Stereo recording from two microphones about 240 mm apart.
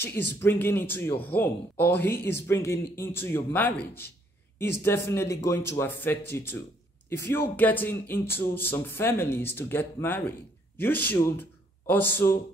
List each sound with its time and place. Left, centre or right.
0.3 s speech: centre